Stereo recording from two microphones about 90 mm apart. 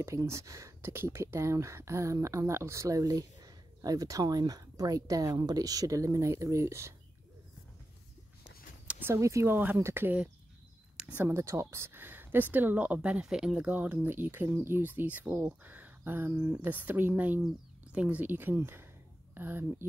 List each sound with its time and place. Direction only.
0.0 s speech: 35° right (ahead or behind)
9.1 s speech: 35° right (ahead or behind)